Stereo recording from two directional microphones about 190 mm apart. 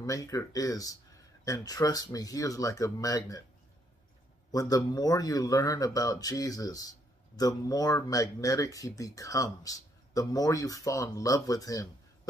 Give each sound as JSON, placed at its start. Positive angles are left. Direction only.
{"t": 0.0, "sound": "speech", "side_deg": 20}
{"t": 4.5, "sound": "speech", "side_deg": 20}